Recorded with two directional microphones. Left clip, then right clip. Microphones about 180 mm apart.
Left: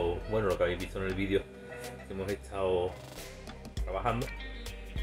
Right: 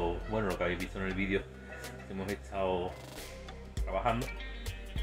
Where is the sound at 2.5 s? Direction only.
20° left (ahead or behind).